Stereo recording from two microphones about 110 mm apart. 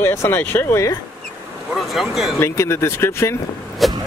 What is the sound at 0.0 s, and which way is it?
Speech, 25° left (ahead or behind).